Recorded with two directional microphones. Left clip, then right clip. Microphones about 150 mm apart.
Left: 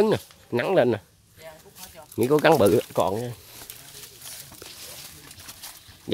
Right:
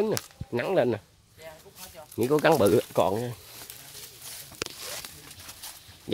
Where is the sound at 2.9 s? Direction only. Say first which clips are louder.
Left 1 dB; 5° right (ahead or behind).